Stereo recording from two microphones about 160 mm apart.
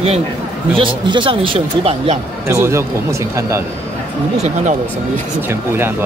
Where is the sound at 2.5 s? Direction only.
15° right (ahead or behind).